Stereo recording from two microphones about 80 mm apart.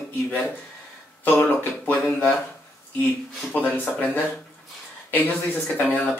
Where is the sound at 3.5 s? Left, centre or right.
Left.